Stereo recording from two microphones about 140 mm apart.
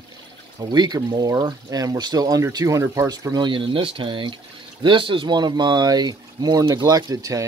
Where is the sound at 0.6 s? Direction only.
30° right (ahead or behind).